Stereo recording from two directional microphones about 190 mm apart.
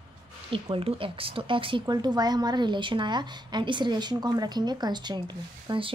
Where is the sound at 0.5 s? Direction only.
30° right (ahead or behind).